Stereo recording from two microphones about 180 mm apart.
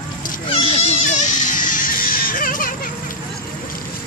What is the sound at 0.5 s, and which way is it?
Music, 30° left (ahead or behind).